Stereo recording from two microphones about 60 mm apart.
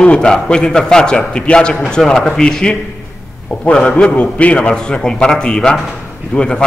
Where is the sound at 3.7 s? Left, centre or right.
Centre.